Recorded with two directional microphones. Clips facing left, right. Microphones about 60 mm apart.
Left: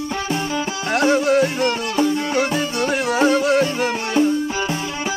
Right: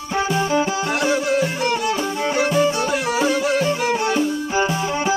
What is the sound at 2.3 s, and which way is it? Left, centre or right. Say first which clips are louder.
Music: right 2 dB; right.